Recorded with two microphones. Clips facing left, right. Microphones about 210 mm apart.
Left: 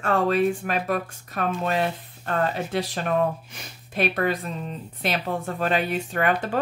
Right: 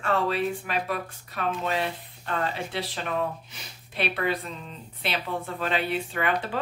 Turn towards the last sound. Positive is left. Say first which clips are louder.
# left 4 dB
turn(degrees=45)  # may be behind; listen again after turning